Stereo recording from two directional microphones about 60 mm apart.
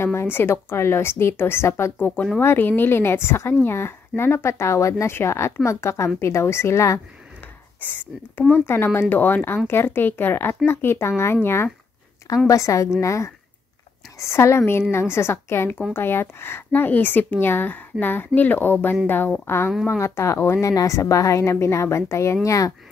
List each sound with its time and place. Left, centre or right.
0.0 s a woman's voice: left
2.0 s a woman's voice: left
5.1 s a woman's voice: left
7.8 s a woman's voice: left
12.4 s a woman's voice: left
20.6 s a woman's voice: left